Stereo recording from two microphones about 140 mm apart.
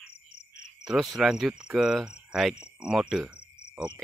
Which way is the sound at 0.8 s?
Centre (ahead or behind).